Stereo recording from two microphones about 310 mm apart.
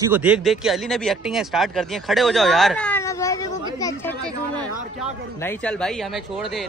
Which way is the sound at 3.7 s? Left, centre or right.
Centre.